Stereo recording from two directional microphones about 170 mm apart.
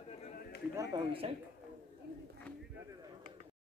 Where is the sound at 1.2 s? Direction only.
35° right (ahead or behind).